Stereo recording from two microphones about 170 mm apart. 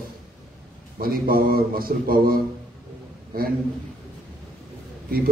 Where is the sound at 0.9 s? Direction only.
60° right (ahead or behind).